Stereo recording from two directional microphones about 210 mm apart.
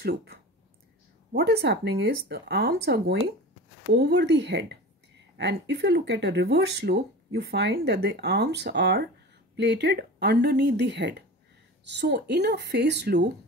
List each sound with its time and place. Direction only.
0.0 s speech: 50° right (ahead or behind)